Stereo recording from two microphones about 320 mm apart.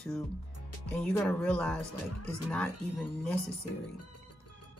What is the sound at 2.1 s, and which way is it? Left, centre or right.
Speech, left.